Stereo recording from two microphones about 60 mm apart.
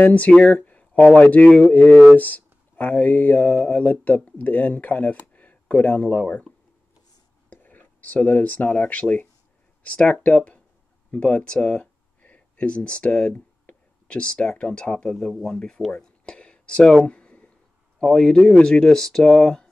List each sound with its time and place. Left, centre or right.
0.0 s speech: left
0.4 s a sound: left
1.1 s speech: left
7.4 s speech: left
15.1 s speech: centre
17.0 s a sound: centre
18.0 s speech: centre